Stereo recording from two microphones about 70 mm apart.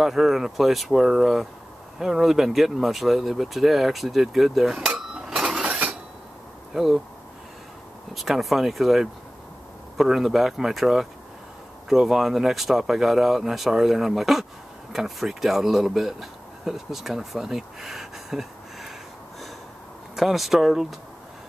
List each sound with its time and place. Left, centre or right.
0.0 s speech: centre
5.5 s a sound: centre
6.7 s speech: centre
8.1 s speech: centre
20.2 s speech: centre